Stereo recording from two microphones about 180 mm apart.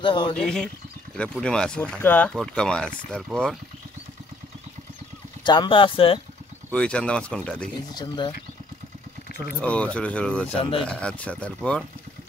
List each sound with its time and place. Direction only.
0.0 s speech: 25° left (ahead or behind)
0.3 s speech: 5° left (ahead or behind)
5.4 s speech: 25° left (ahead or behind)
6.7 s speech: 5° left (ahead or behind)
7.9 s speech: 25° left (ahead or behind)
9.6 s speech: 5° left (ahead or behind)
10.6 s speech: 30° left (ahead or behind)
10.9 s speech: 5° left (ahead or behind)